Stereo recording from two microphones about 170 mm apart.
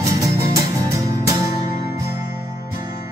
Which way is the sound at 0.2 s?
20° right (ahead or behind).